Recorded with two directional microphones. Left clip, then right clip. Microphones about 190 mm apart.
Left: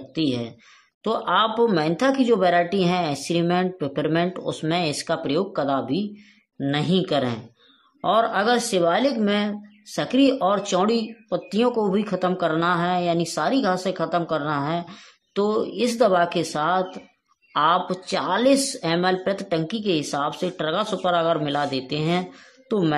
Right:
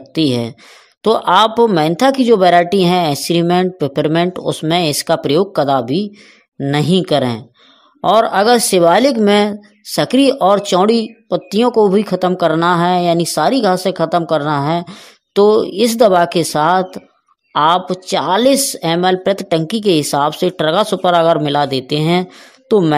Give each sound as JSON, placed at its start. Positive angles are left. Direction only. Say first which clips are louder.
{"t": 0.1, "sound": "speech", "louder": "right 9 dB", "side_deg": -40}